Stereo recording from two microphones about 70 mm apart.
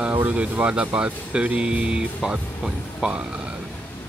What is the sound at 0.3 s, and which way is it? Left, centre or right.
Speech, centre.